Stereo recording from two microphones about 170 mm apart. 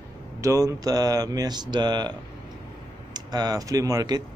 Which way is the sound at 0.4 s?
20° right (ahead or behind).